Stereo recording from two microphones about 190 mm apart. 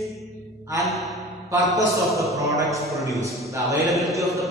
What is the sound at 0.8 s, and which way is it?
Speech, centre (ahead or behind).